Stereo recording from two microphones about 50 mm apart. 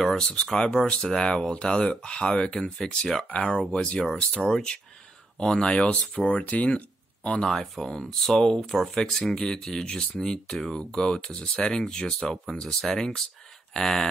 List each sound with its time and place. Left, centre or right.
0.0 s speech: centre
3.3 s speech: left
4.3 s speech: centre; by 6.8 s left
7.4 s speech: centre